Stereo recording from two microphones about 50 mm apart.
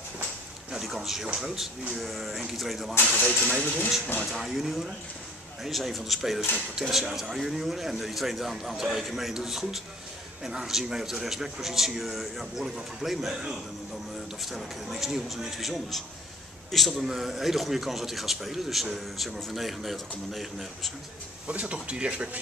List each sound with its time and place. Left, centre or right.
0.7 s a man's voice: centre
3.3 s speech: centre
3.6 s speech: left
4.3 s a man's voice: centre
14.4 s a man's voice: centre
21.5 s speech: right